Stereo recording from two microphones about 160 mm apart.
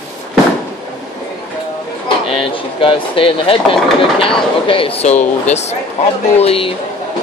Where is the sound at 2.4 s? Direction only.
35° left (ahead or behind).